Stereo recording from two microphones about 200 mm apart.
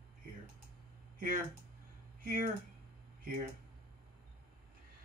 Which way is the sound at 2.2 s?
45° right (ahead or behind).